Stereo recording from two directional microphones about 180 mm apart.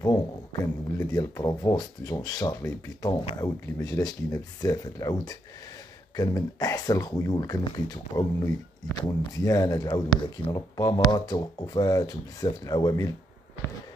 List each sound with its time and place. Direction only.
0.0 s speech: 20° left (ahead or behind)